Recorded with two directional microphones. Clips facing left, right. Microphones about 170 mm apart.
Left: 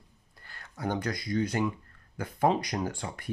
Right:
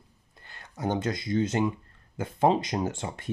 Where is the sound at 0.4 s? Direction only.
20° right (ahead or behind).